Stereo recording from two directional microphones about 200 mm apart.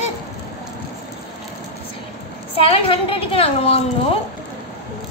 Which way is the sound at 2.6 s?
30° left (ahead or behind).